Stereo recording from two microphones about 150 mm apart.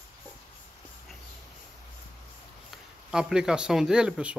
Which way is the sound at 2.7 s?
5° right (ahead or behind).